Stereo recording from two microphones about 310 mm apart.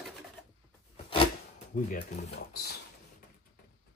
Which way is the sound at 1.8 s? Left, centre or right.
Left.